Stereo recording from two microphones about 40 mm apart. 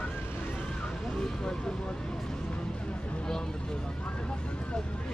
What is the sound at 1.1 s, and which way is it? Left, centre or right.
Vehicle, centre.